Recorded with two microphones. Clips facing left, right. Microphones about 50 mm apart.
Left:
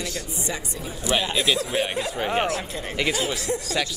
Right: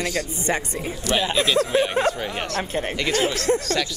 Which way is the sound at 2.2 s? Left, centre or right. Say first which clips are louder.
Left 4 dB; left.